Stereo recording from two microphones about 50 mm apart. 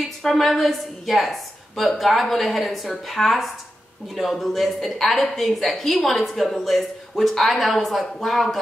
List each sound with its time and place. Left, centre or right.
0.2 s a woman's voice: centre